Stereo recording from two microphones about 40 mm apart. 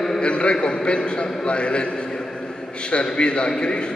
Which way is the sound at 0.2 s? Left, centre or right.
Left.